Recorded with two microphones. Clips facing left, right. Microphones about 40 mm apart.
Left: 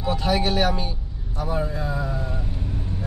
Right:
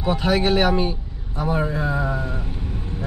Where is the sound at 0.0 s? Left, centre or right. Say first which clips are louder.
Right 3 dB; right.